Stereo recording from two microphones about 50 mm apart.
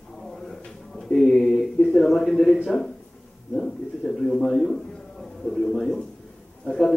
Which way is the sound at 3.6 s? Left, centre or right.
Centre.